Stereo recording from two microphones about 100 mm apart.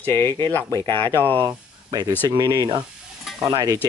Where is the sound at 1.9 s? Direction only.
40° right (ahead or behind).